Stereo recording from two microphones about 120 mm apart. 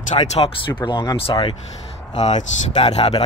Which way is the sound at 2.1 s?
65° left (ahead or behind).